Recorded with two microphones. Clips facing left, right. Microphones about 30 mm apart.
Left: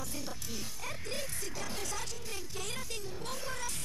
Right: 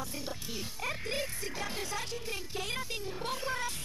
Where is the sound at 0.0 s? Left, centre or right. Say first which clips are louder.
Right 2 dB; right.